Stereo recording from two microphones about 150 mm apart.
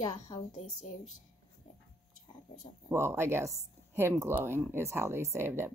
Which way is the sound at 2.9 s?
15° right (ahead or behind).